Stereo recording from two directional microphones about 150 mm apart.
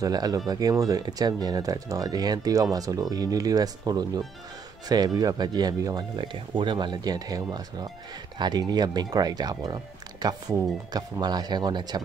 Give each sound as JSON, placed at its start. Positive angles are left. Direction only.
{"t": 0.0, "sound": "speech", "side_deg": -25}